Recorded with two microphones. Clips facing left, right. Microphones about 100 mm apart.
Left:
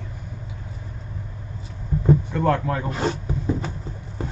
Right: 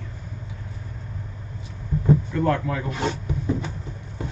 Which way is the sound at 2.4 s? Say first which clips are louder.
Left 2 dB; 40° left (ahead or behind).